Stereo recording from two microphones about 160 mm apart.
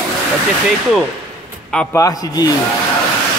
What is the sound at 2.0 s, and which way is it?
Speech, 20° left (ahead or behind).